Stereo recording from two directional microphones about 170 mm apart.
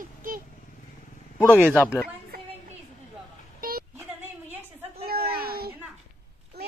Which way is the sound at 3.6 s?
60° right (ahead or behind).